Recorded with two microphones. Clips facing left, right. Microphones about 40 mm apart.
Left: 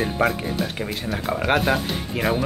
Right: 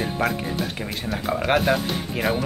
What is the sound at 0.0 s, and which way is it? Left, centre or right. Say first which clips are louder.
Speech: left 2 dB; centre.